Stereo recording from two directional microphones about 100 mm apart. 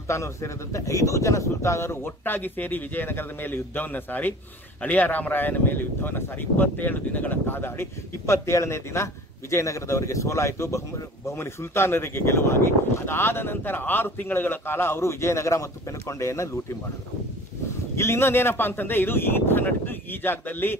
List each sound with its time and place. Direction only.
0.1 s speech: 30° left (ahead or behind)
17.9 s speech: 25° left (ahead or behind)